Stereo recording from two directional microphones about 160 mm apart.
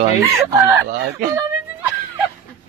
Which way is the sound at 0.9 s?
90° right.